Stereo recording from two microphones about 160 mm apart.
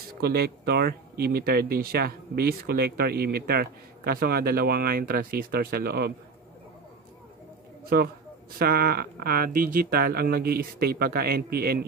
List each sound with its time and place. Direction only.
0.1 s speech: 75° right (ahead or behind)
8.5 s speech: 75° right (ahead or behind)